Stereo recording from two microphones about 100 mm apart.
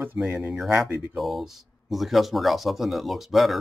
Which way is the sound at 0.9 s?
15° right (ahead or behind).